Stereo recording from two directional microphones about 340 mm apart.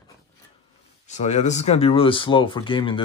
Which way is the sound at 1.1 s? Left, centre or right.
Centre.